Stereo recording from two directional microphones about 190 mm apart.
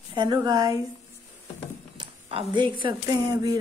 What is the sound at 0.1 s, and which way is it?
Speech, 20° right (ahead or behind).